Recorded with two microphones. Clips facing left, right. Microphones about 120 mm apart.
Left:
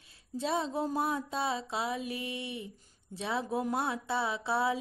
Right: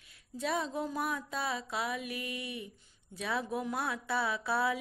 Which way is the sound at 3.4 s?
40° left (ahead or behind).